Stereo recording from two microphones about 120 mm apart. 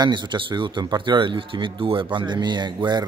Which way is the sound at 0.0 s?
40° right (ahead or behind).